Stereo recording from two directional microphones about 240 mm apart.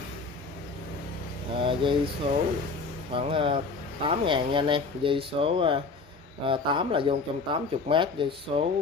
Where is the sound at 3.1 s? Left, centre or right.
Right.